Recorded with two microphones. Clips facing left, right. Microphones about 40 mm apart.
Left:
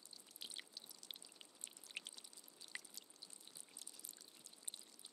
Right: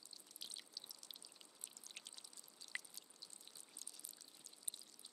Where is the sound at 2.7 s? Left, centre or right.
Right.